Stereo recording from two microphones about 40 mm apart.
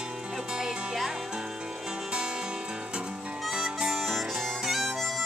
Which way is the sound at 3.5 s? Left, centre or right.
Centre.